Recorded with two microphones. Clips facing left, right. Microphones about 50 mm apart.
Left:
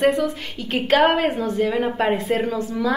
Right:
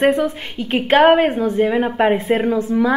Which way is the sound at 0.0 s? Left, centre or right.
Right.